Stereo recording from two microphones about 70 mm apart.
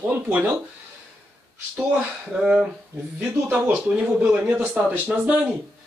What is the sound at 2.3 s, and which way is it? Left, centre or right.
Speech, centre.